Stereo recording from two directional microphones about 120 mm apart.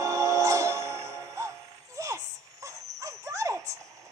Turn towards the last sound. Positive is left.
turn(degrees=-25)  # may be behind; listen again after turning